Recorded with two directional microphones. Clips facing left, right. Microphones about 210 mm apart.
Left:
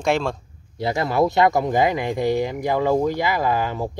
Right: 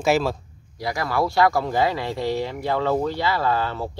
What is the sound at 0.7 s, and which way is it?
Speech, 25° left (ahead or behind).